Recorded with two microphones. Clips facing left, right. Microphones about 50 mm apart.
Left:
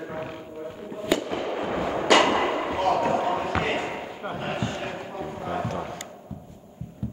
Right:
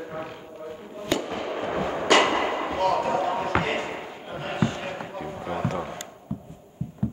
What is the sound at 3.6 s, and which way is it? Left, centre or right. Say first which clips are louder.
Basketball bounce: left 1 dB; centre.